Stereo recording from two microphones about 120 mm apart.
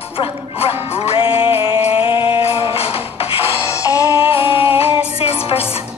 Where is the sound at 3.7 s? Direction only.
25° left (ahead or behind).